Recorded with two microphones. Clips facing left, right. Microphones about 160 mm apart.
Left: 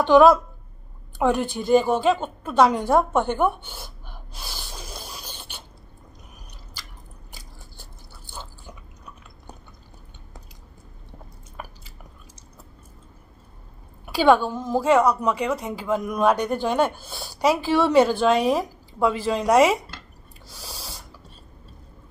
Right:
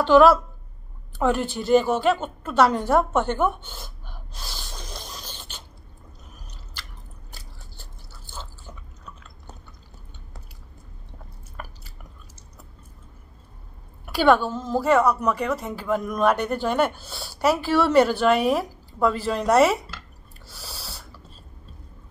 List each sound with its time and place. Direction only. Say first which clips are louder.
0.0 s a woman's voice: left 1 dB; 15° left (ahead or behind)
4.3 s rub: left 1 dB; 10° left (ahead or behind)
7.3 s chewing: left 1 dB; 15° left (ahead or behind)
14.1 s a woman's voice: left 1 dB; 15° left (ahead or behind)
20.4 s a sound: left 1 dB; 10° left (ahead or behind)